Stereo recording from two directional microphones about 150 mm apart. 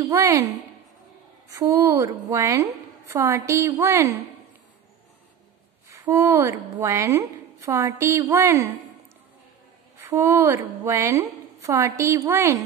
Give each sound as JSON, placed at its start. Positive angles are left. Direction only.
{"t": 0.1, "sound": "a woman's voice", "side_deg": -20}
{"t": 5.9, "sound": "a woman's voice", "side_deg": -20}
{"t": 9.9, "sound": "a woman's voice", "side_deg": -15}